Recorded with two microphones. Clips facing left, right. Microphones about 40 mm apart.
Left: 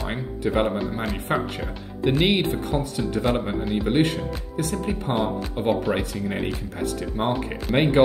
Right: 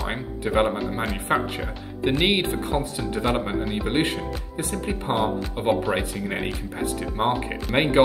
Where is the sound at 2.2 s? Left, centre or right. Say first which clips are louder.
Even; right; by 7.3 s centre.